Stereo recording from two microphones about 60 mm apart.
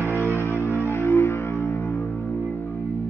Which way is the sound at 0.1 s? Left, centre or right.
Right.